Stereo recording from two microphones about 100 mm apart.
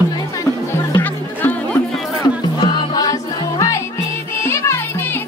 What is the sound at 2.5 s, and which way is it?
Music, 50° left (ahead or behind).